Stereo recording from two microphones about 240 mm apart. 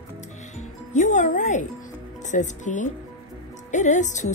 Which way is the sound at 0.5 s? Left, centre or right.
Left.